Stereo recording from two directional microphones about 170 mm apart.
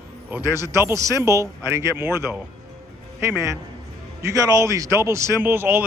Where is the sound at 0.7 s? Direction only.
15° right (ahead or behind).